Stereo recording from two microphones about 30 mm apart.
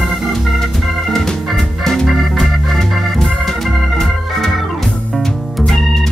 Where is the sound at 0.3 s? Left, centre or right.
Centre.